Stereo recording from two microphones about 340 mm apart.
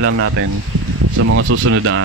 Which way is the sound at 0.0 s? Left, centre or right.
Right.